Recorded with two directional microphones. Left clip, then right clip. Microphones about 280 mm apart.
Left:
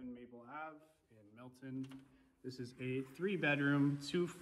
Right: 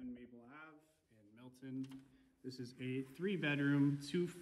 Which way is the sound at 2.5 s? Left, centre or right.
Left.